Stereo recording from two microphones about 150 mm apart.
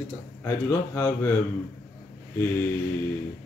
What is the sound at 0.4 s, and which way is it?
Speech, 15° left (ahead or behind).